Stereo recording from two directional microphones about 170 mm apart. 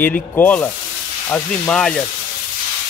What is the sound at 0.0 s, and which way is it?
Speech, 10° left (ahead or behind).